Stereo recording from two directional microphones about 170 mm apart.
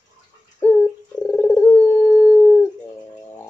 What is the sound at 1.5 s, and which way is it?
Cat, 10° left (ahead or behind).